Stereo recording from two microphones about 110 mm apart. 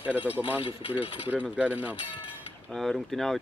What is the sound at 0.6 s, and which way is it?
Speech, 55° left (ahead or behind).